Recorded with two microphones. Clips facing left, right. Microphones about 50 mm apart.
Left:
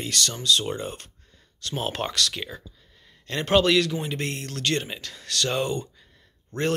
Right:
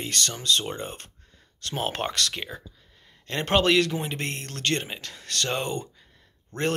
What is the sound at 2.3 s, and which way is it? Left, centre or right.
Speech, right.